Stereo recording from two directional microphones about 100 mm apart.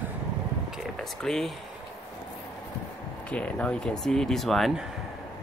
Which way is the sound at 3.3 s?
10° left (ahead or behind).